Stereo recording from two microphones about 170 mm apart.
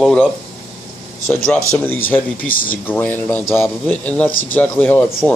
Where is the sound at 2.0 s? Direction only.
10° left (ahead or behind).